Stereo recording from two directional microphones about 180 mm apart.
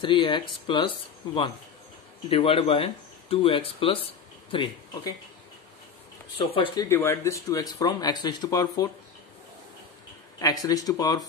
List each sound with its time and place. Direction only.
0.0 s speech: 25° left (ahead or behind)
6.3 s speech: 25° left (ahead or behind)
10.4 s speech: 20° left (ahead or behind)